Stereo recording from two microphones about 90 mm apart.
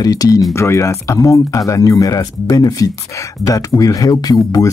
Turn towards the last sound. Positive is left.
turn(degrees=45)  # may be behind; listen again after turning